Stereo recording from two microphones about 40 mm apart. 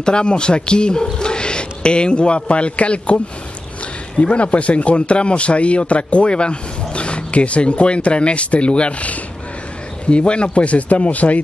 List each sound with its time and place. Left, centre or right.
0.0 s a man's voice: left
4.2 s a man's voice: left